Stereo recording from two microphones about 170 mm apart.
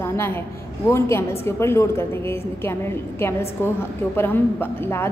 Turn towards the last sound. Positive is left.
turn(degrees=10)  # may be behind; listen again after turning